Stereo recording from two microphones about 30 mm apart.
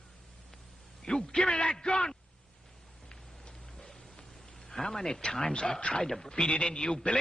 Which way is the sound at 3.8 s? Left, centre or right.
Left.